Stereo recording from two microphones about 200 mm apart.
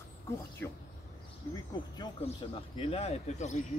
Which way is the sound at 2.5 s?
30° left (ahead or behind).